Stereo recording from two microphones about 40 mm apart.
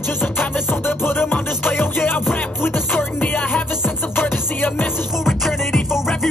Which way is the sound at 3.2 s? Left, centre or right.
Left.